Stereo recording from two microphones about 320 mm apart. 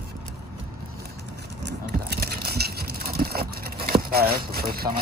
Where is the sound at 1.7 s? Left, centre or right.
Right.